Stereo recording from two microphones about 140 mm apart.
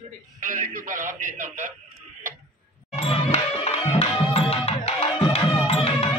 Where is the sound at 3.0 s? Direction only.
45° left (ahead or behind).